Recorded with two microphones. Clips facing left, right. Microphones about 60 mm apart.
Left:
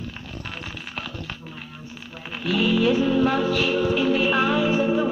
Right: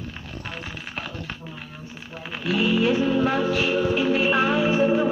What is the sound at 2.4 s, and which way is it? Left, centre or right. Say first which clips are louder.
Music: left 1 dB; right.